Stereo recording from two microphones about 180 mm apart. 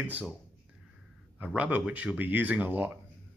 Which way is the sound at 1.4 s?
10° right (ahead or behind).